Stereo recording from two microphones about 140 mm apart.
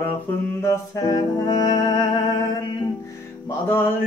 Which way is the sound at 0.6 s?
20° left (ahead or behind).